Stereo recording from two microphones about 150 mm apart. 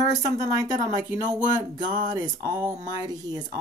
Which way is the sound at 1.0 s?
55° right (ahead or behind).